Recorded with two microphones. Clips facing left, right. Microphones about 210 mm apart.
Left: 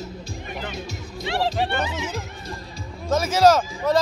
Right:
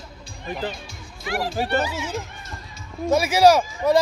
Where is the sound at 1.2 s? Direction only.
25° left (ahead or behind).